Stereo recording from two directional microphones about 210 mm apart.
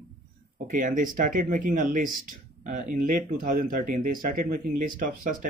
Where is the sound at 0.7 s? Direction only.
40° right (ahead or behind).